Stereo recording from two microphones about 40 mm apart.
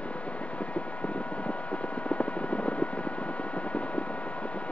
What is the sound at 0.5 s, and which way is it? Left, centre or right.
Vehicle, left.